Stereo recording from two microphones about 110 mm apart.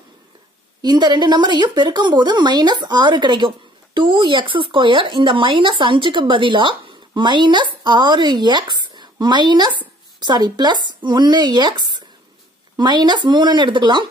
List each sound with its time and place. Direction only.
0.8 s a woman's voice: 40° right (ahead or behind)